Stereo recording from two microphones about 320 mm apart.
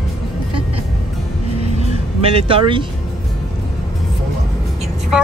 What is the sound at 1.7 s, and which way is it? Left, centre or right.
Music, centre.